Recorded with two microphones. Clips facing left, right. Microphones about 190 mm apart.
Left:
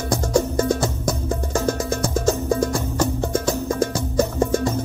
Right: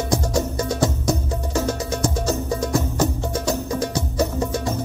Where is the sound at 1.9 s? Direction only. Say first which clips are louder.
Left 2 dB; 50° left (ahead or behind).